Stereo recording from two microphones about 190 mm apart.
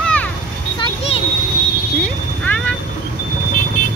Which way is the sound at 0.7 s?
25° left (ahead or behind).